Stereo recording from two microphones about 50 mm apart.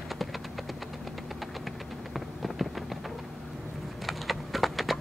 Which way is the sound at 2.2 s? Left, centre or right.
Centre.